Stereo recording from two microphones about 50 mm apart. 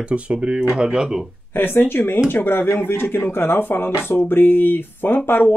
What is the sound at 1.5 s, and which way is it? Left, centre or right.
Speech, left.